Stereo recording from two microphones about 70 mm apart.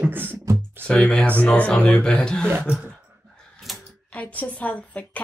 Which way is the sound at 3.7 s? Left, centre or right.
Centre.